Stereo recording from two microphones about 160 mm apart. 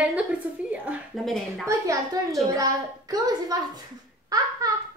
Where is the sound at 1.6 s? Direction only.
20° right (ahead or behind).